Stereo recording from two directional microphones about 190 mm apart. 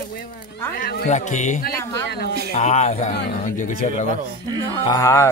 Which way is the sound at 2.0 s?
60° left (ahead or behind).